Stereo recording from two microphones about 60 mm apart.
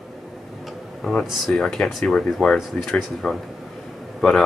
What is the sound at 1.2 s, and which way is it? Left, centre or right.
Speech, centre.